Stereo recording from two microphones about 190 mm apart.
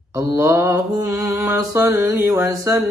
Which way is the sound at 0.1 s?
15° right (ahead or behind).